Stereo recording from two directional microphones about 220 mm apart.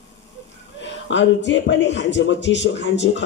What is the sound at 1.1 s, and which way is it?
A man's voice, 55° left (ahead or behind).